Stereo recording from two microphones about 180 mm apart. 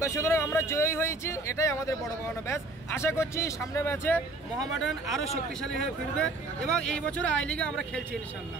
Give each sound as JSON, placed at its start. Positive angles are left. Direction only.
{"t": 0.0, "sound": "speech", "side_deg": 15}
{"t": 4.6, "sound": "speech", "side_deg": 0}